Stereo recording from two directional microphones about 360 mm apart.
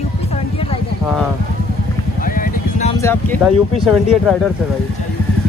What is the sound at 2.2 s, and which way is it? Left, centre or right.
Vehicle, left.